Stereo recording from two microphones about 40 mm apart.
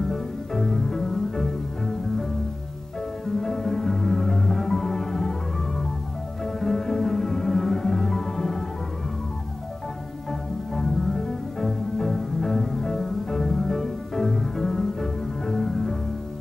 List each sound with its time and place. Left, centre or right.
0.1 s music: centre
3.3 s music: centre
6.4 s music: centre
10.7 s music: centre